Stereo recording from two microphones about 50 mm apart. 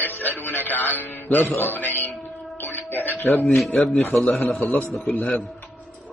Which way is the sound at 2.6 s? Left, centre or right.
Left.